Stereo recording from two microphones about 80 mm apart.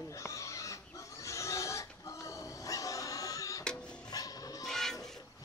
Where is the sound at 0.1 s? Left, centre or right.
Left.